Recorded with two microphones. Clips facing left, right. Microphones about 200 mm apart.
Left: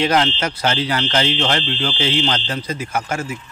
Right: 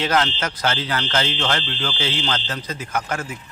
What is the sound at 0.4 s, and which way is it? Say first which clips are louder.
A man's voice: left 3 dB; 10° left (ahead or behind).